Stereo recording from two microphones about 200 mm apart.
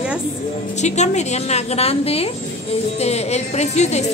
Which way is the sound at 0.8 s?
35° left (ahead or behind).